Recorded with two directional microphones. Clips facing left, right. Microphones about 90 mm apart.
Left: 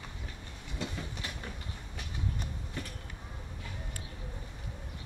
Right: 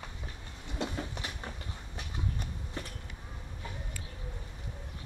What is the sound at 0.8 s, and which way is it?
Train, 30° right (ahead or behind).